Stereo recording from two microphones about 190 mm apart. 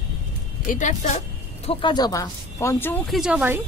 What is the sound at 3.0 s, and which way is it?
Speech, centre (ahead or behind).